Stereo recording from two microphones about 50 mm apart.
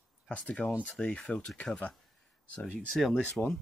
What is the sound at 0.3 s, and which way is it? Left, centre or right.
Speech, left.